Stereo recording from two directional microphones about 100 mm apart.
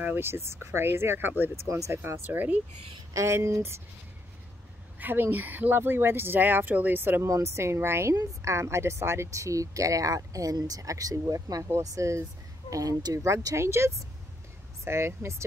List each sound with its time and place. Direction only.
0.0 s speech: 20° right (ahead or behind)
3.1 s speech: 30° right (ahead or behind)
4.9 s a woman's voice: 20° right (ahead or behind)